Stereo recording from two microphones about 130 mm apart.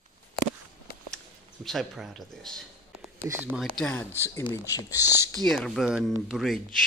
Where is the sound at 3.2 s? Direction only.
15° right (ahead or behind).